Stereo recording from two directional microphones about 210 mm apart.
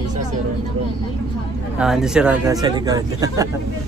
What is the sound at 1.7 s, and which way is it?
Speech, 5° right (ahead or behind).